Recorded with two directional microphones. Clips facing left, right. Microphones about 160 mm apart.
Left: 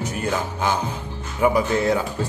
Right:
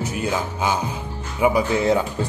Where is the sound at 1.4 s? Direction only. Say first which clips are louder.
Even; 10° right (ahead or behind).